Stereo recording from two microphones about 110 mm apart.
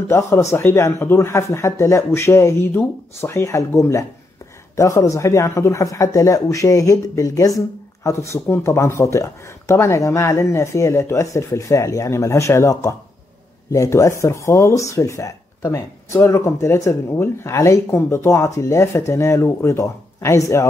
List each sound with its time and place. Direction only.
0.1 s speech: 25° left (ahead or behind)